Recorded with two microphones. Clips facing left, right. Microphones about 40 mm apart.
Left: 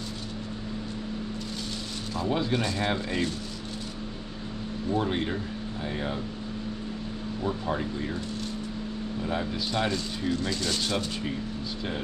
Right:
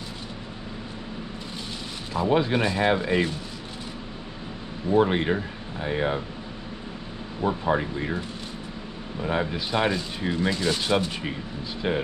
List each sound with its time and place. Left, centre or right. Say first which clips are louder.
2.1 s speech: right 5 dB; right
4.9 s speech: right 8 dB; right
7.4 s speech: right 6 dB; right
9.2 s speech: right 5 dB; right